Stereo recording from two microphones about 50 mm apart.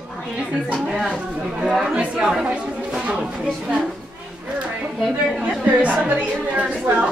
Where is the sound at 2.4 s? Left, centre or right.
Centre.